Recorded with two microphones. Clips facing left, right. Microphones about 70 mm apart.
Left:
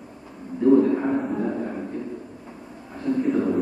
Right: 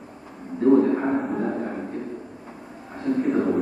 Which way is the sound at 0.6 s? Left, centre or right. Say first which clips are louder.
Even; centre.